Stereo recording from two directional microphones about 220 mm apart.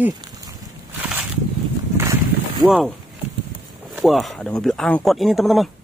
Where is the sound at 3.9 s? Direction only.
Centre (ahead or behind).